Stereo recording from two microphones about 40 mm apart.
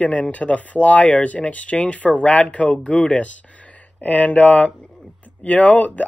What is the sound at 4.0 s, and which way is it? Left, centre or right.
Speech, left.